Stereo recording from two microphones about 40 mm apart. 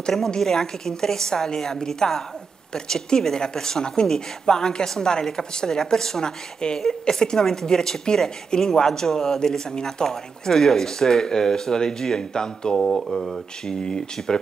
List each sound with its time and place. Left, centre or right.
0.4 s speech: centre